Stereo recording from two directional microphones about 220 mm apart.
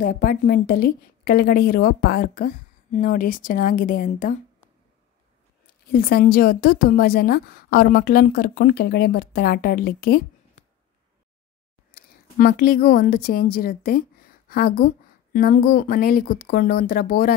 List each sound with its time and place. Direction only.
0.0 s a woman's voice: 40° left (ahead or behind)
5.9 s a woman's voice: 40° left (ahead or behind)
11.9 s a woman's voice: 40° left (ahead or behind)